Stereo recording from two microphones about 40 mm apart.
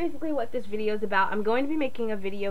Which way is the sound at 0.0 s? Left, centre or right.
Centre.